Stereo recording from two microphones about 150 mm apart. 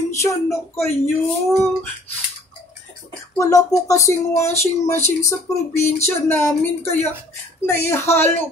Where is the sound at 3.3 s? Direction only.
20° left (ahead or behind).